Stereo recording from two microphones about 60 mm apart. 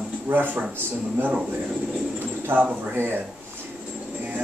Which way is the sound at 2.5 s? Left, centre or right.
Right.